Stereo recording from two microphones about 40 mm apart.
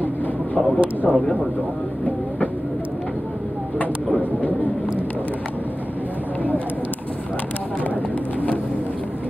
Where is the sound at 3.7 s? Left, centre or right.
Left.